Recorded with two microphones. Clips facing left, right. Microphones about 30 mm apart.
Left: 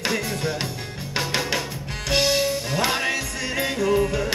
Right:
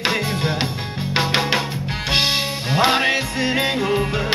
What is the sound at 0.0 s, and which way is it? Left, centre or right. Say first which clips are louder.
Music: right 4 dB; right.